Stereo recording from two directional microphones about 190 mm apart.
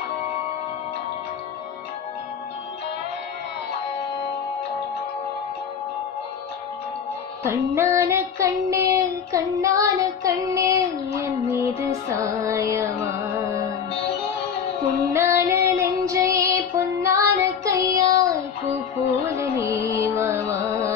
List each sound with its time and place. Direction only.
7.4 s child singing: 15° right (ahead or behind)
15.1 s child singing: 15° right (ahead or behind)
19.3 s music: 15° right (ahead or behind)